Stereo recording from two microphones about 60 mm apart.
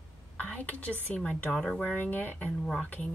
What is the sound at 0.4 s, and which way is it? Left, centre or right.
Speech, left.